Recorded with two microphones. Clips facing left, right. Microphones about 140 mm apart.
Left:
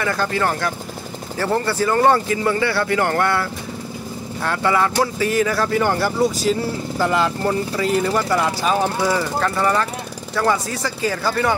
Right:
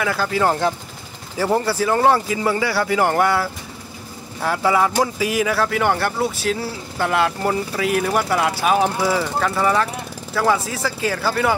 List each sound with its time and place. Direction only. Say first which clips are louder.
0.0 s speech: right 1 dB; 5° right (ahead or behind)
0.5 s speech: right 3 dB; 20° right (ahead or behind)
1.4 s speech: right 1 dB; 10° right (ahead or behind)